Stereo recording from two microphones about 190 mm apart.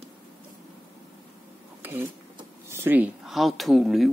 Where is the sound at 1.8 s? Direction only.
10° right (ahead or behind).